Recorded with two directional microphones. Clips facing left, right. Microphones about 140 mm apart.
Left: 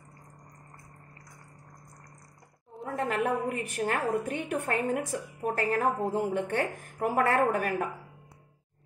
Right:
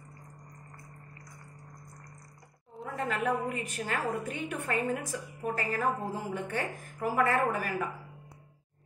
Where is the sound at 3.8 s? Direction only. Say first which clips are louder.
Left 5 dB; 60° left (ahead or behind).